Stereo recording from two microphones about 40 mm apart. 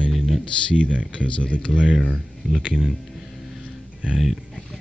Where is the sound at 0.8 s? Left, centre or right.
Right.